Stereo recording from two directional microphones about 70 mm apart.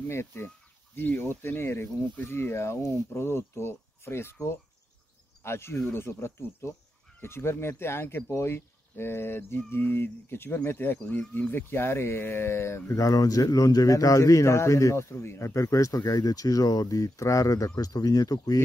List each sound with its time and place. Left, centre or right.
0.1 s speech: left
11.1 s speech: centre
11.5 s speech: left
13.0 s a man's voice: left